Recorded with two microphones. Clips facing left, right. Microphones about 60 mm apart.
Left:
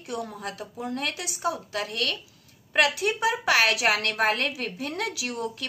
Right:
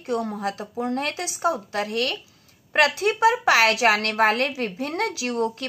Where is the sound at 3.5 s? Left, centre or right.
Right.